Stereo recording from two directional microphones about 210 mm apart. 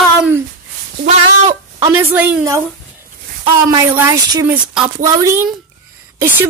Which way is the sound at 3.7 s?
20° right (ahead or behind).